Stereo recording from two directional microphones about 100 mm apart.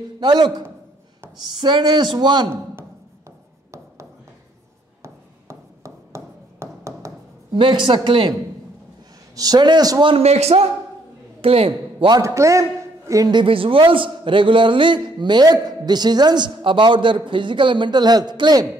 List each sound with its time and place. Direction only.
0.2 s a man's voice: 50° right (ahead or behind)
5.0 s a sound: 30° right (ahead or behind)
7.5 s a man's voice: 55° right (ahead or behind)
9.3 s a man's voice: 40° right (ahead or behind)
10.0 s a man's voice: 80° right
11.4 s a man's voice: 70° right (ahead or behind)
12.2 s a man's voice: 30° right (ahead or behind)
13.3 s a man's voice: 55° right (ahead or behind)